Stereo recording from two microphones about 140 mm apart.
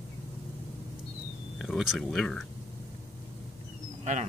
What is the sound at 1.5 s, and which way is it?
Speech, centre (ahead or behind).